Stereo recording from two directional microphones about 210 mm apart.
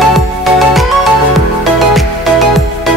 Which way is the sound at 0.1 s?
Centre (ahead or behind).